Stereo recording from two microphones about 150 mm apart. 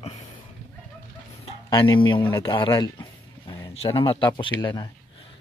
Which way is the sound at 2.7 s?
25° left (ahead or behind).